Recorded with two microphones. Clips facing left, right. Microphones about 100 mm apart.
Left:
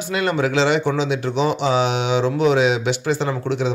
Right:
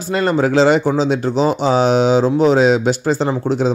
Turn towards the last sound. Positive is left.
turn(degrees=-35)  # may be behind; listen again after turning